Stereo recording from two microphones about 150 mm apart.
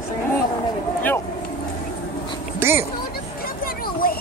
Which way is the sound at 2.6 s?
15° right (ahead or behind).